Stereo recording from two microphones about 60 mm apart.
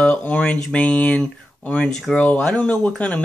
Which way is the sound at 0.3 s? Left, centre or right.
Centre.